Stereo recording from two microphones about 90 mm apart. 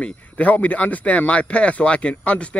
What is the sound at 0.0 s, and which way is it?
Speech, 15° left (ahead or behind).